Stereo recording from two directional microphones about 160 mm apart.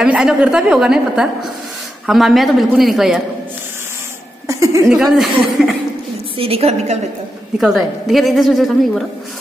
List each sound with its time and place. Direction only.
0.0 s a woman's voice: 5° right (ahead or behind)
4.5 s a sound: 20° right (ahead or behind)
4.8 s a woman's voice: centre (ahead or behind)
6.3 s a woman's voice: 35° right (ahead or behind)
7.5 s a woman's voice: centre (ahead or behind)